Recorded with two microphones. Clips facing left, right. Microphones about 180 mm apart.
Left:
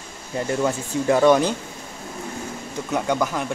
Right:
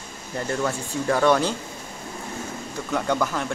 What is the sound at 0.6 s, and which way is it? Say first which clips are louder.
Speech: left 5 dB; 15° left (ahead or behind).